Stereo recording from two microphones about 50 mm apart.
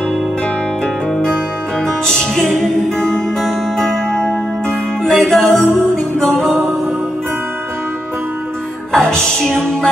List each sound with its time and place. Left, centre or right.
2.0 s music: centre
8.9 s music: centre